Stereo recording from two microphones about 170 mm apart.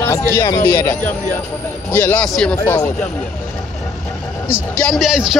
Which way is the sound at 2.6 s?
20° left (ahead or behind).